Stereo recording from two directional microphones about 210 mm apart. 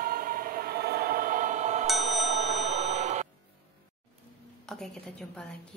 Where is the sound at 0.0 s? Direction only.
45° right (ahead or behind).